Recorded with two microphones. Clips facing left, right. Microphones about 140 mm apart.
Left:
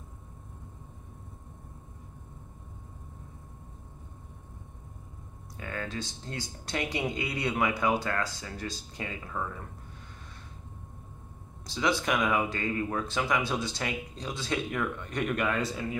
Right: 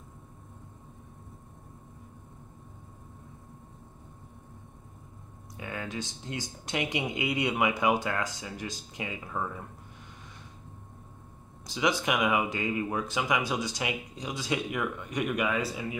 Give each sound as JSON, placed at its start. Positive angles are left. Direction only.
{"t": 5.6, "sound": "speech", "side_deg": -15}
{"t": 11.6, "sound": "speech", "side_deg": -15}